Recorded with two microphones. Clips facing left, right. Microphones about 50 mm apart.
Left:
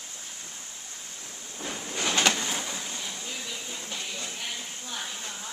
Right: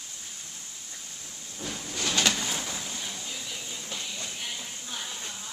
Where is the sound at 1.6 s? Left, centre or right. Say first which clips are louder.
Left 2 dB; left.